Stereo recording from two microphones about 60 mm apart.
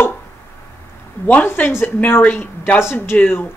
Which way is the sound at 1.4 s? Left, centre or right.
Left.